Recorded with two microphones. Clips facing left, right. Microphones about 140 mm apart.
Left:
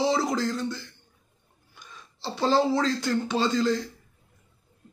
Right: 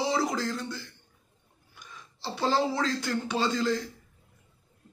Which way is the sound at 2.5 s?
20° left (ahead or behind).